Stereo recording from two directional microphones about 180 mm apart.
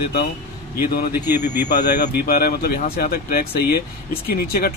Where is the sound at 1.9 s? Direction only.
60° left (ahead or behind).